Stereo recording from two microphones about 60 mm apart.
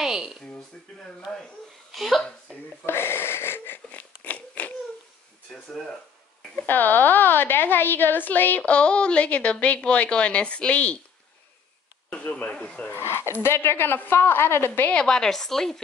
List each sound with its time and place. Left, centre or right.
0.0 s a sound: centre
1.3 s speech: centre
1.9 s speech: centre
2.9 s wheeze: left
6.6 s a woman's voice: left
8.6 s a woman's voice: centre
12.1 s speech: centre
12.8 s a woman's voice: left
15.0 s speech: centre